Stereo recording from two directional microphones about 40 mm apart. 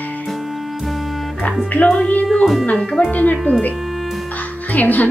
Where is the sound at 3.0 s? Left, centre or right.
Left.